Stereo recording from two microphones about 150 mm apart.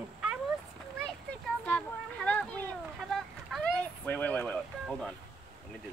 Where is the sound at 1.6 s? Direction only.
10° left (ahead or behind).